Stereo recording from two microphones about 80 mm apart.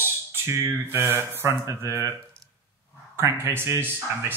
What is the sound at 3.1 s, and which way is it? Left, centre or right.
Speech, right.